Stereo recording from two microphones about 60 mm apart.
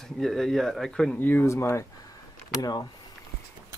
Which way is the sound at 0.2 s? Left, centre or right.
Centre.